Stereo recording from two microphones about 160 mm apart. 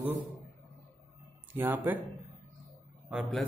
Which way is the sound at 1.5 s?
10° right (ahead or behind).